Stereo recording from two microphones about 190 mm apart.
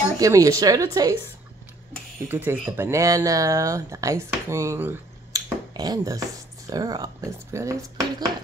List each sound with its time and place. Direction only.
0.2 s speech: 15° right (ahead or behind)
2.2 s speech: 10° right (ahead or behind)